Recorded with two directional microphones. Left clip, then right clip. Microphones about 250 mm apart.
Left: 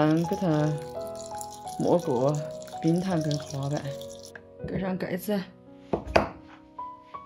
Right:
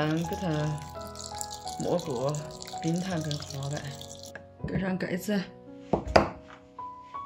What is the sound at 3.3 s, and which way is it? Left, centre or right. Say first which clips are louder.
Speech: left 5 dB; centre.